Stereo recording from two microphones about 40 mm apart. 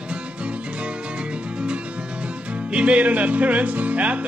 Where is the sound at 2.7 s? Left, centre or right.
Right.